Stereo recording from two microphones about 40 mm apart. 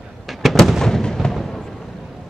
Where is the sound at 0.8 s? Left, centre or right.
Centre.